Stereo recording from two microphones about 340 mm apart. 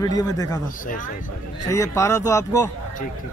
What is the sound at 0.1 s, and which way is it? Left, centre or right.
Speech, centre.